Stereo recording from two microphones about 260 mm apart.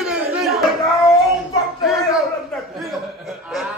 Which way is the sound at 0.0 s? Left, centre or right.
Centre.